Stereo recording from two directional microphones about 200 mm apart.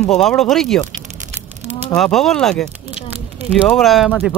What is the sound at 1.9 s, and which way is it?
Speech, centre (ahead or behind).